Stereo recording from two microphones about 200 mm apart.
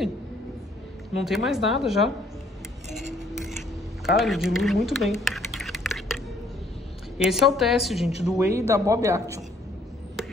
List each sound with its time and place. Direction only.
1.2 s a woman's voice: centre (ahead or behind)
3.3 s a sound: centre (ahead or behind)
5.2 s typing: centre (ahead or behind)
7.2 s a woman's voice: centre (ahead or behind)
8.4 s a man's voice: 15° right (ahead or behind)